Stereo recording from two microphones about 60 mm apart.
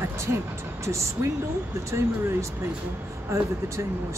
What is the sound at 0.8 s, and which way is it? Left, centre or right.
Speech, right.